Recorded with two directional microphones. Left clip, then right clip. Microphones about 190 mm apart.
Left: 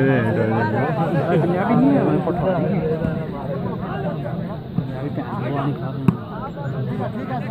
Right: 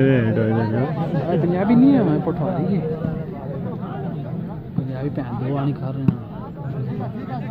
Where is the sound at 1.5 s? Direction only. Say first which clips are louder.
Right 5 dB; 45° right (ahead or behind).